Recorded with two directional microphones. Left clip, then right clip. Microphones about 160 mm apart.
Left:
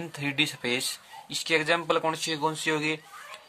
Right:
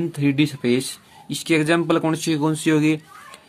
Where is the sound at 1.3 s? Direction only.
20° right (ahead or behind).